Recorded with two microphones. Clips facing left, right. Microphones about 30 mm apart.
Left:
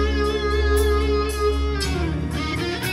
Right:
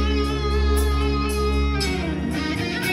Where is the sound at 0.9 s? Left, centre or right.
Centre.